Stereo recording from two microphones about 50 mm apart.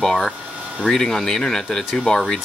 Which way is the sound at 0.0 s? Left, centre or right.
Centre.